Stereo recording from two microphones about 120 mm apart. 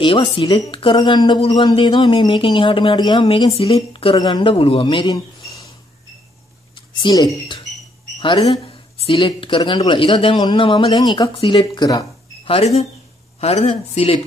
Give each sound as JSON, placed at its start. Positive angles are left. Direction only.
{"t": 0.0, "sound": "speech", "side_deg": 45}
{"t": 3.5, "sound": "speech", "side_deg": 50}
{"t": 6.9, "sound": "speech", "side_deg": 35}
{"t": 8.2, "sound": "speech", "side_deg": 45}
{"t": 12.4, "sound": "speech", "side_deg": 60}